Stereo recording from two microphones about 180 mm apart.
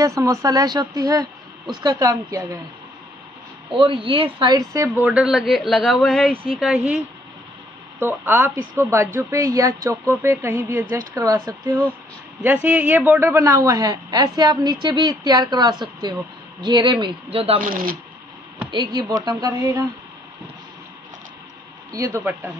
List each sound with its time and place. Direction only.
0.0 s a woman's voice: 15° right (ahead or behind)
3.7 s a woman's voice: 30° right (ahead or behind)
4.8 s speech: 10° right (ahead or behind)
8.0 s a woman's voice: 10° right (ahead or behind); by 17.6 s 30° right (ahead or behind)
17.6 s speech: 50° right (ahead or behind)
18.7 s a woman's voice: 25° right (ahead or behind)
21.9 s speech: 15° right (ahead or behind)